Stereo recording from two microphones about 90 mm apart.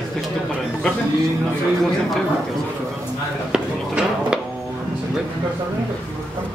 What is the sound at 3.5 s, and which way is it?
Speech, 10° right (ahead or behind).